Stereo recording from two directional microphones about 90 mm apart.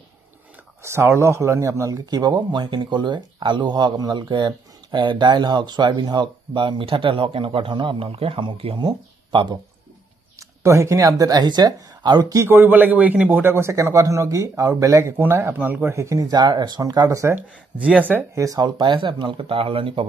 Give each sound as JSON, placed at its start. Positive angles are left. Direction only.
{"t": 0.8, "sound": "speech", "side_deg": -30}
{"t": 2.0, "sound": "speech", "side_deg": -50}
{"t": 8.8, "sound": "speech", "side_deg": -60}
{"t": 10.6, "sound": "speech", "side_deg": -35}
{"t": 12.4, "sound": "a man's voice", "side_deg": -25}
{"t": 17.4, "sound": "speech", "side_deg": -15}
{"t": 18.3, "sound": "speech", "side_deg": -40}